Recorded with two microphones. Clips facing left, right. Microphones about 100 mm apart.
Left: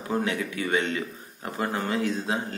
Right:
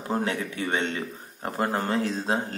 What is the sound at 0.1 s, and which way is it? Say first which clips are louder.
Speech: even; 35° right (ahead or behind).